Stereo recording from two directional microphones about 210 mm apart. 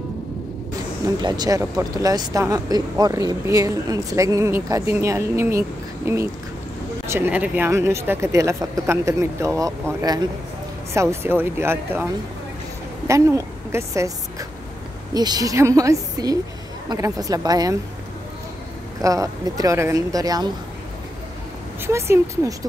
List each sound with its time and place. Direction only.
1.0 s a woman's voice: 20° right (ahead or behind)
15.1 s speech: 20° right (ahead or behind)
18.9 s speech: 15° right (ahead or behind)
21.8 s speech: 10° right (ahead or behind)